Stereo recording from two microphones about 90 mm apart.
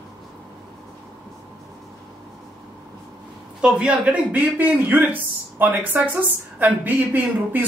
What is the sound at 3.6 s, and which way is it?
A woman's voice, 10° right (ahead or behind).